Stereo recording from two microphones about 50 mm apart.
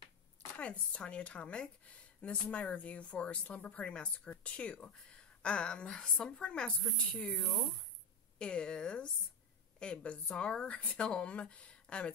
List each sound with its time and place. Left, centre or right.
0.6 s speech: left
7.2 s speech: centre
8.4 s speech: left